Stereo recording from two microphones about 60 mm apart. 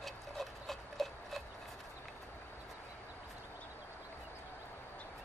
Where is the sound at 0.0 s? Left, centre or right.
Centre.